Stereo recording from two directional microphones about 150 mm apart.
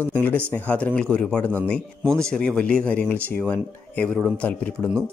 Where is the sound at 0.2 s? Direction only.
10° left (ahead or behind).